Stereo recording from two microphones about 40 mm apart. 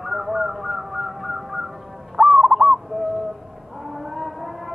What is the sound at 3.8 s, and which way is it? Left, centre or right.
Vehicle, centre.